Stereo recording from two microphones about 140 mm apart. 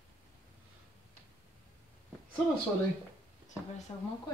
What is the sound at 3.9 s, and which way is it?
Speech, 25° left (ahead or behind).